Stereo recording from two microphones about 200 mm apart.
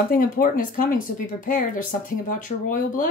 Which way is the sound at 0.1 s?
45° left (ahead or behind).